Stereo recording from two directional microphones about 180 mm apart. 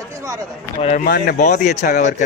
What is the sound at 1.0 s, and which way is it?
Speech, 60° left (ahead or behind).